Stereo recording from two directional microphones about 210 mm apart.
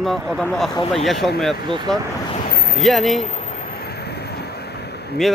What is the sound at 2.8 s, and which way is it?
Speech, centre (ahead or behind).